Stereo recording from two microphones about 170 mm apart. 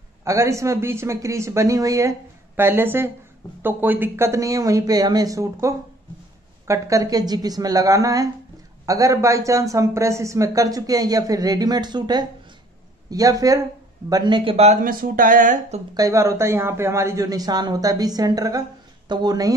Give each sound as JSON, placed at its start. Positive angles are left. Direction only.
{"t": 0.2, "sound": "a man's voice", "side_deg": -15}
{"t": 15.9, "sound": "a man's voice", "side_deg": -20}